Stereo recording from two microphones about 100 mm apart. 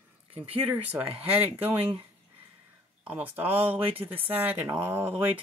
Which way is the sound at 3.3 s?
15° right (ahead or behind).